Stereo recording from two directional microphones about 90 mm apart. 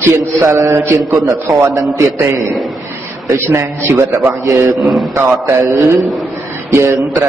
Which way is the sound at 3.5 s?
30° right (ahead or behind).